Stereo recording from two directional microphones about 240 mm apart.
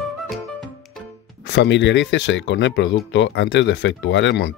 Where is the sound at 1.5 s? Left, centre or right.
Left.